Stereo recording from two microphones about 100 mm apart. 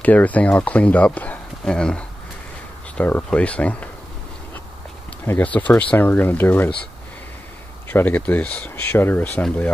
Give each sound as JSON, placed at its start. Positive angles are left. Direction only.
{"t": 0.0, "sound": "speech", "side_deg": 15}
{"t": 3.0, "sound": "speech", "side_deg": 20}
{"t": 5.2, "sound": "speech", "side_deg": 20}
{"t": 7.9, "sound": "speech", "side_deg": 15}